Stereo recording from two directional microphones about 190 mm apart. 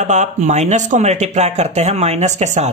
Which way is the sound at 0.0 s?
40° right (ahead or behind).